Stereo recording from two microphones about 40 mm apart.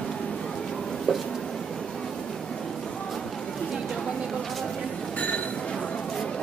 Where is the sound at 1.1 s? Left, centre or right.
Centre.